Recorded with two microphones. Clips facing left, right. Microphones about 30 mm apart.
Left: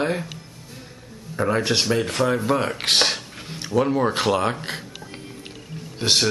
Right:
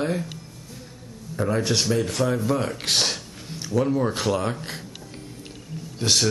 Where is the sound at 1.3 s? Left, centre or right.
Left.